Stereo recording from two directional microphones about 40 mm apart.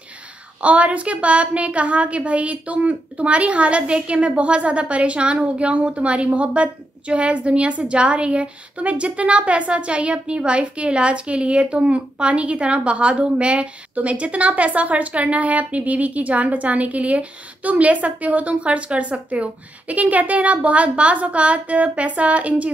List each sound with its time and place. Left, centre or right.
0.6 s a woman's voice: right